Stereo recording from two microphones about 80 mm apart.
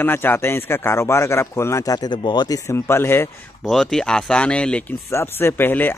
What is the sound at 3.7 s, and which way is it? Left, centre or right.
Speech, centre.